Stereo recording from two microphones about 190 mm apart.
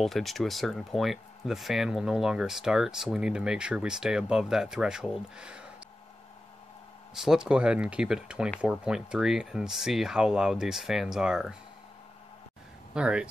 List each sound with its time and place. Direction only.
0.0 s speech: centre (ahead or behind)
7.2 s speech: 5° right (ahead or behind)
12.9 s speech: 5° right (ahead or behind)